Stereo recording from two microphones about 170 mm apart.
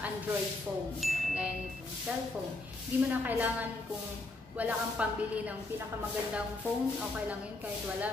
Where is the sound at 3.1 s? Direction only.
10° right (ahead or behind).